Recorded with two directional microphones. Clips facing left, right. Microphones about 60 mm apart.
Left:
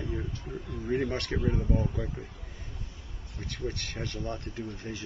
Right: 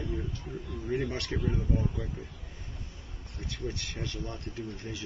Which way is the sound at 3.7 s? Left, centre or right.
Left.